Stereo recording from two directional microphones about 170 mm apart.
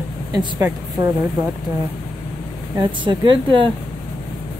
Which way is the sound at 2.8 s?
30° right (ahead or behind).